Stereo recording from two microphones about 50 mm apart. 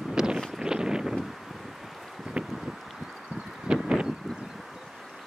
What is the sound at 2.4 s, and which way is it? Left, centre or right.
Wind, centre.